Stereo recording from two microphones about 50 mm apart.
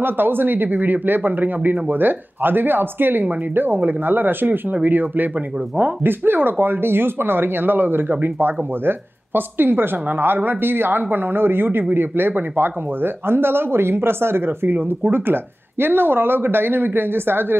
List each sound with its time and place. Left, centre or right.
0.0 s speech: right